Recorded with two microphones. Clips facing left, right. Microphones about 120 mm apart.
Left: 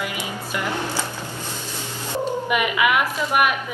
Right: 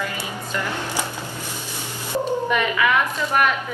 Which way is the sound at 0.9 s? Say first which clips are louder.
Even; 15° right (ahead or behind).